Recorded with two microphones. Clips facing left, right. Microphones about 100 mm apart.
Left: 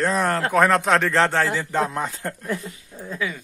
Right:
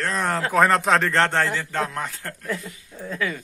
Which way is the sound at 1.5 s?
15° left (ahead or behind).